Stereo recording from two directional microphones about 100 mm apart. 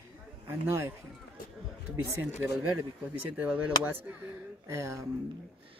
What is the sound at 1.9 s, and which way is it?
Speech, 25° right (ahead or behind).